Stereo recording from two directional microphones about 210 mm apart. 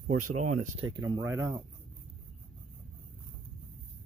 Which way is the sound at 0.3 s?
90° right.